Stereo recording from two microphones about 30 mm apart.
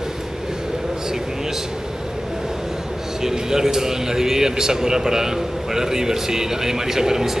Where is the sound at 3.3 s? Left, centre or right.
Centre.